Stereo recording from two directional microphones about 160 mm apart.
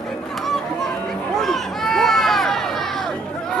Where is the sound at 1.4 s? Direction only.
Centre (ahead or behind).